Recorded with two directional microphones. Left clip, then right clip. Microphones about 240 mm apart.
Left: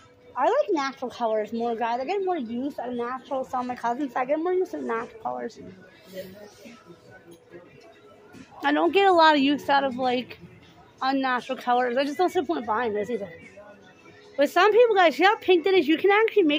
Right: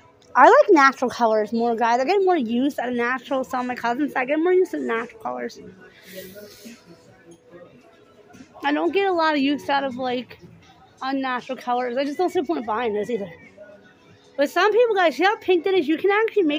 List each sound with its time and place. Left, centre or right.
0.3 s speech: right; by 5.6 s centre
8.5 s a woman's voice: centre
14.3 s a woman's voice: centre